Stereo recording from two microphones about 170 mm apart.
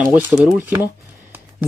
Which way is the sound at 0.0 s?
5° right (ahead or behind).